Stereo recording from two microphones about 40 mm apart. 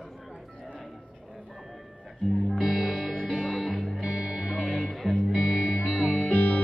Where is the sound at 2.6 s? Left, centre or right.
Right.